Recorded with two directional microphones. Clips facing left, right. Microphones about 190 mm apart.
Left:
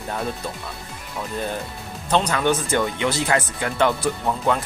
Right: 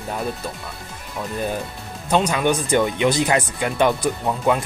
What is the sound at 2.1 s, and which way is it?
Speech, 10° right (ahead or behind).